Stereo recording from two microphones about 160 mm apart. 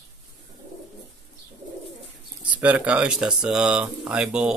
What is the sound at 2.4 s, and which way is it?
Speech, 10° right (ahead or behind).